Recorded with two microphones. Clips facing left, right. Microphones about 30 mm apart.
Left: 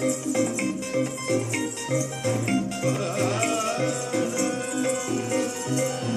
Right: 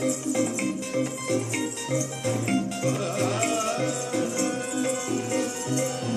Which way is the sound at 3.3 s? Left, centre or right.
Centre.